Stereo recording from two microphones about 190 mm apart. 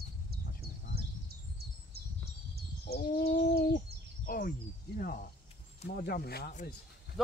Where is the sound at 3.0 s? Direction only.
50° left (ahead or behind).